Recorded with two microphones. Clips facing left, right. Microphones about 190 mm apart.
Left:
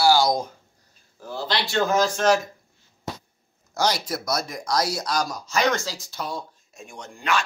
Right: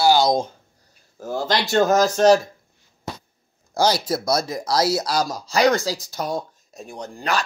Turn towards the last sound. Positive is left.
turn(degrees=-35)  # may be behind; listen again after turning